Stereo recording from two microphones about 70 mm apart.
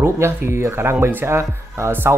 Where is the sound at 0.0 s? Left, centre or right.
Right.